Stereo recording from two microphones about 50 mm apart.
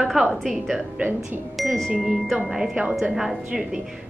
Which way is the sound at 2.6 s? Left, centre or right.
Centre.